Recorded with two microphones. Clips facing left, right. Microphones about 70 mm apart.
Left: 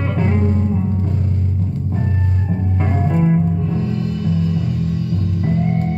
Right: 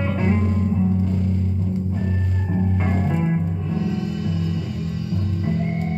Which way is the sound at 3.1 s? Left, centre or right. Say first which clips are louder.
Left 5 dB; centre.